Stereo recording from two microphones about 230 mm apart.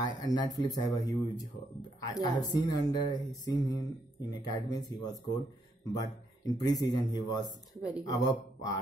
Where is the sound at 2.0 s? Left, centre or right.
Centre.